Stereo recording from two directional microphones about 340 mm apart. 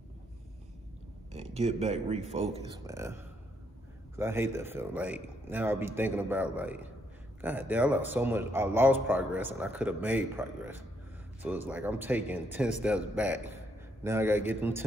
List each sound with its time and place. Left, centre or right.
1.3 s a man's voice: centre